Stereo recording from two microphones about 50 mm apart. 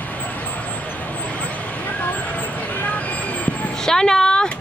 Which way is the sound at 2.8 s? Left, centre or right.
Left.